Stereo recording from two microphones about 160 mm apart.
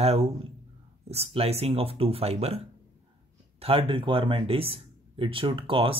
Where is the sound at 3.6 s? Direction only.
30° right (ahead or behind).